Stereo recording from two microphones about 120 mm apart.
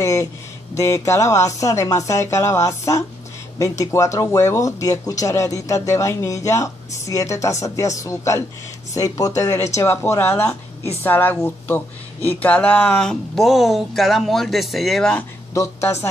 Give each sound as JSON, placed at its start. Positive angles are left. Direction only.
{"t": 0.0, "sound": "speech", "side_deg": 25}
{"t": 15.5, "sound": "speech", "side_deg": 25}